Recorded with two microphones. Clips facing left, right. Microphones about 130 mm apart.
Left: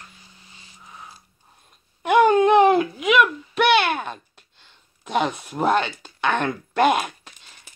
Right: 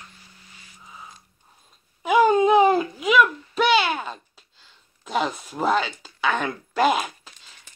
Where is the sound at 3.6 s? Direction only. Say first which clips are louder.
Left 2 dB; 60° left (ahead or behind).